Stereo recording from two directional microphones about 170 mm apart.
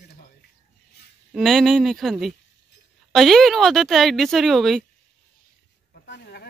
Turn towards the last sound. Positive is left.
turn(degrees=70)  # may be behind; listen again after turning